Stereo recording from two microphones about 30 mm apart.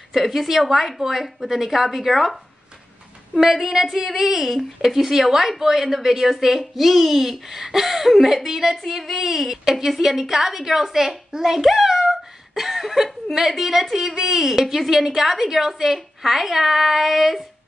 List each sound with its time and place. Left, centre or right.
0.1 s a woman's voice: centre
3.3 s a woman's voice: centre